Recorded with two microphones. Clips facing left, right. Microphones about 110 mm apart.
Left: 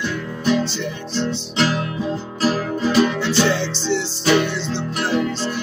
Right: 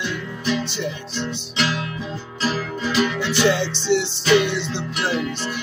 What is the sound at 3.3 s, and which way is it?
Music, 15° right (ahead or behind).